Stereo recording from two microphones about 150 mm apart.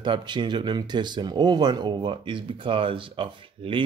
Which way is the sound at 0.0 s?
30° right (ahead or behind).